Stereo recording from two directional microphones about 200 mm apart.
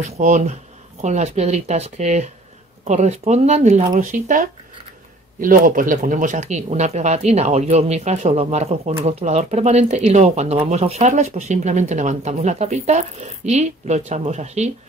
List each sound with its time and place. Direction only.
0.2 s speech: 35° right (ahead or behind)